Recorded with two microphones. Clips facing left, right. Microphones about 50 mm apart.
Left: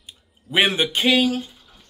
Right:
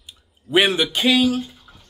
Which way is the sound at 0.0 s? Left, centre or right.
Left.